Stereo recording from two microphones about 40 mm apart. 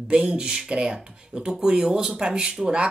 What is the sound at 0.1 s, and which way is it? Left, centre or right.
Speech, right.